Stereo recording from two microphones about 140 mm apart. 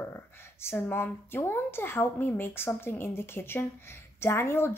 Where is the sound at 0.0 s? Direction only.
15° left (ahead or behind).